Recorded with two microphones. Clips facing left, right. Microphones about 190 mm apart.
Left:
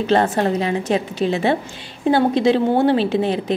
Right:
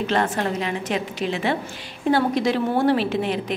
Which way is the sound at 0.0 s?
30° left (ahead or behind).